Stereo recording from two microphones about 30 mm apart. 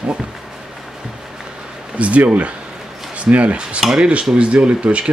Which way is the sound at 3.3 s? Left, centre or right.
Right.